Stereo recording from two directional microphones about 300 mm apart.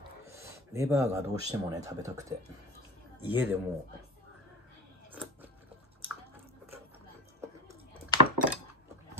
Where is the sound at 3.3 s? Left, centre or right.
Centre.